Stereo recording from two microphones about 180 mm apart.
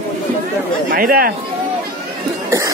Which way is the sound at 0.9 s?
55° right (ahead or behind).